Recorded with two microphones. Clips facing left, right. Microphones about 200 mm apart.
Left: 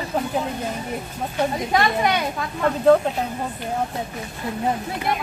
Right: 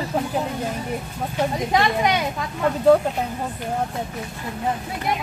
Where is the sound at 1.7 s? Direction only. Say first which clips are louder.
Even; 15° right (ahead or behind).